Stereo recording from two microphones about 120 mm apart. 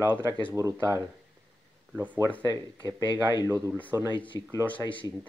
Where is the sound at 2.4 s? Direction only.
25° right (ahead or behind).